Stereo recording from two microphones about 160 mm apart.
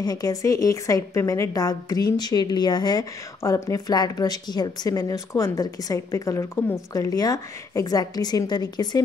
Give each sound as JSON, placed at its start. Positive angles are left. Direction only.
{"t": 0.0, "sound": "a woman's voice", "side_deg": 25}